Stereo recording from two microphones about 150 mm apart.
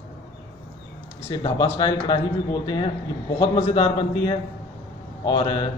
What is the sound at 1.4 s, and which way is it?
A man's voice, 30° left (ahead or behind).